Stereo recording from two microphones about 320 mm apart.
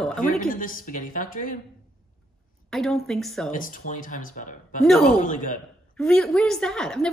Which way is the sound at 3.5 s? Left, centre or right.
Left.